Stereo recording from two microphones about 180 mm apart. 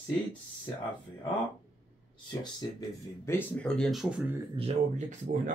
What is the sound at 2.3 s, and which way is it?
Speech, 25° left (ahead or behind).